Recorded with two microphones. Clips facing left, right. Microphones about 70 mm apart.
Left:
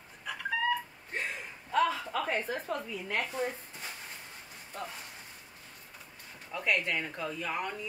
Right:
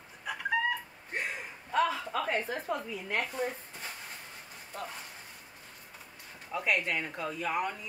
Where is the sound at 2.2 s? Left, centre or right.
Centre.